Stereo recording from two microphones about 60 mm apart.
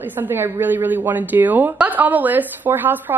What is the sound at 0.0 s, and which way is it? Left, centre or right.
A woman's voice, right.